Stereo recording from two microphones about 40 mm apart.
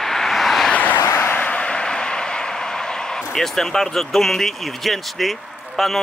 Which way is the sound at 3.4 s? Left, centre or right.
Centre.